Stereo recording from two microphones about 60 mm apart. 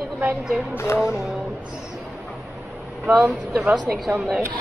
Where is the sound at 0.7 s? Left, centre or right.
Left.